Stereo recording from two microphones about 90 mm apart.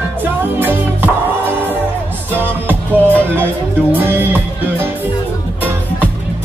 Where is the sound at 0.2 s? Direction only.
20° right (ahead or behind).